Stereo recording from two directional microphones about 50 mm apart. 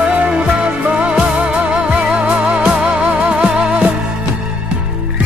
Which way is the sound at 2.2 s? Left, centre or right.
Right.